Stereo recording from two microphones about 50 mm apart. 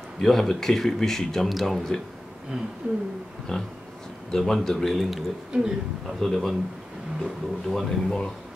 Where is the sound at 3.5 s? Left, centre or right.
Centre.